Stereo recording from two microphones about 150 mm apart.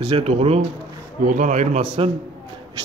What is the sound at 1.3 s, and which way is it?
Speech, 55° right (ahead or behind).